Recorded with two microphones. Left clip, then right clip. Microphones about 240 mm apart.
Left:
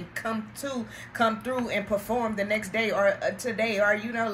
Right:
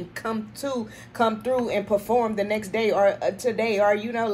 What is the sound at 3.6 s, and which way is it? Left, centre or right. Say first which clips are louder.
Speech: right 3 dB; centre.